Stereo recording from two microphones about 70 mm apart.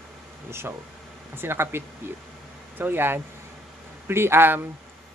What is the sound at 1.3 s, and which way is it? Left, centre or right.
Speech, right.